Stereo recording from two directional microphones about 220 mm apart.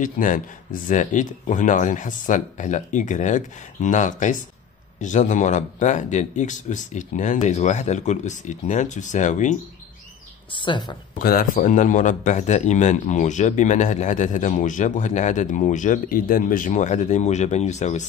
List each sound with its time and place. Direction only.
0.0 s speech: 35° left (ahead or behind)
10.5 s speech: 20° left (ahead or behind)
11.2 s speech: 40° left (ahead or behind)